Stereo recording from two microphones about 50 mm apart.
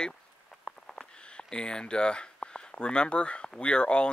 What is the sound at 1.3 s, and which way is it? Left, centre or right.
Speech, centre.